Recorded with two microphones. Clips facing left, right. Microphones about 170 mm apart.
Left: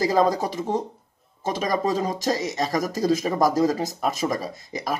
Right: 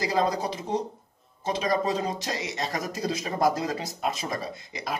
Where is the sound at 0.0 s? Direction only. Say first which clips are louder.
Left 5 dB; 45° left (ahead or behind).